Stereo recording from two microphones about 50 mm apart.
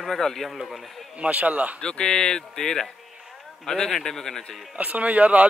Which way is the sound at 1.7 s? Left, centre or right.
Centre.